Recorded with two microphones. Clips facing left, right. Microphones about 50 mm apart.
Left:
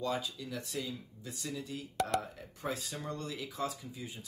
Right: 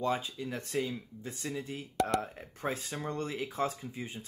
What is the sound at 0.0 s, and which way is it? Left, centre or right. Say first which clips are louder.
Speech: right 3 dB; right.